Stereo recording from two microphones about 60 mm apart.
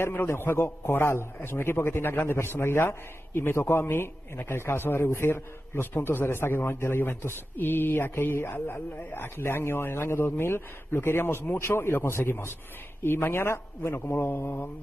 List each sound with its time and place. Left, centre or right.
0.0 s a man's voice: left
14.0 s a man's voice: left